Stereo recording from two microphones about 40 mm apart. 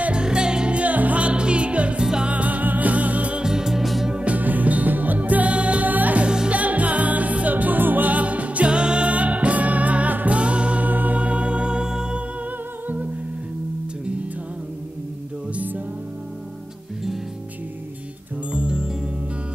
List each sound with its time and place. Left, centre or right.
0.1 s music: right
3.4 s music: centre
3.8 s music: centre
4.1 s music: right
4.4 s music: right
6.2 s music: centre
6.5 s music: right
10.9 s music: right; by 12.2 s centre
12.8 s music: right
15.5 s music: right
18.5 s music: right